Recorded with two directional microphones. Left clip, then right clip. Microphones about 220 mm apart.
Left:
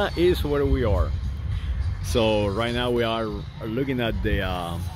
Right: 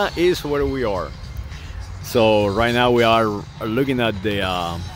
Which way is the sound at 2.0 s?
20° right (ahead or behind).